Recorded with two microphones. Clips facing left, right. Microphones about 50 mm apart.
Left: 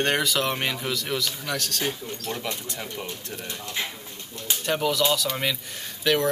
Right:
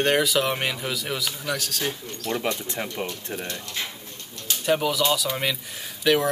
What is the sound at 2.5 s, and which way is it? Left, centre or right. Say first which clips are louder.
Speech: right 4 dB; right.